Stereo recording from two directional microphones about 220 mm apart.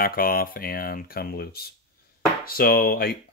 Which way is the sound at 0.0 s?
40° left (ahead or behind).